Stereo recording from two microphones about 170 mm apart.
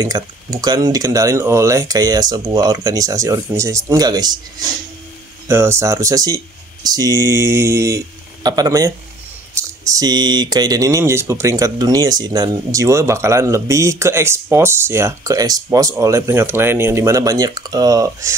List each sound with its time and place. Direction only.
0.0 s speech: 20° right (ahead or behind)
5.5 s speech: 15° right (ahead or behind)